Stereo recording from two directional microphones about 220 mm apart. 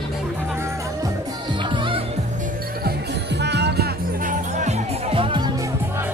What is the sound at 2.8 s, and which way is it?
Music, 50° right (ahead or behind).